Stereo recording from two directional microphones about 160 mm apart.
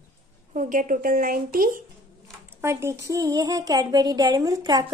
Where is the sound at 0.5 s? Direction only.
55° right (ahead or behind).